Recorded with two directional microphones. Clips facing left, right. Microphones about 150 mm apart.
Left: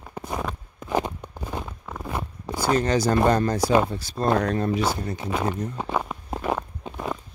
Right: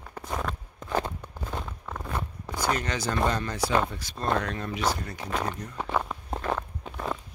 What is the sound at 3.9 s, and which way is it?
Speech, 35° left (ahead or behind).